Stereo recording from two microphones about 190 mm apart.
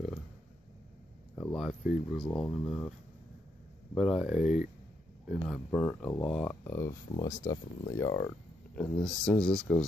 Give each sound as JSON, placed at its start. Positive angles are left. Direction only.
{"t": 1.3, "sound": "speech", "side_deg": 5}
{"t": 3.9, "sound": "speech", "side_deg": 0}
{"t": 4.4, "sound": "speech", "side_deg": 40}
{"t": 5.3, "sound": "speech", "side_deg": 5}
{"t": 9.0, "sound": "speech", "side_deg": 5}